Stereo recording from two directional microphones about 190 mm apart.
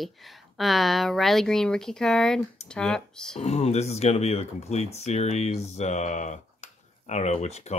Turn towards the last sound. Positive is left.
turn(degrees=35)  # may be behind; listen again after turning